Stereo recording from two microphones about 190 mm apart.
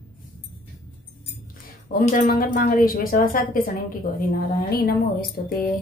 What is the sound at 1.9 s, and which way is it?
A woman's voice, 45° left (ahead or behind).